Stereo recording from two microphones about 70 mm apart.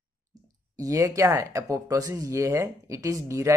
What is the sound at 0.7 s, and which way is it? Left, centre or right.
Speech, right.